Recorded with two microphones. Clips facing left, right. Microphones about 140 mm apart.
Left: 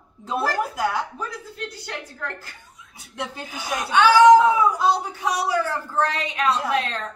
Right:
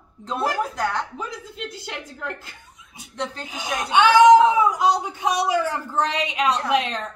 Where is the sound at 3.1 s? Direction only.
10° left (ahead or behind).